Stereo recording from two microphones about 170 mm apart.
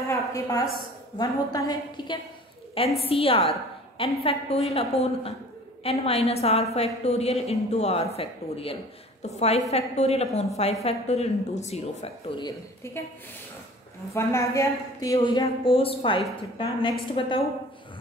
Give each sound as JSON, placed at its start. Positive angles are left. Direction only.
{"t": 0.1, "sound": "a sound", "side_deg": 20}
{"t": 1.1, "sound": "a woman's voice", "side_deg": 20}
{"t": 12.4, "sound": "a woman's voice", "side_deg": 25}
{"t": 14.1, "sound": "a woman's voice", "side_deg": 15}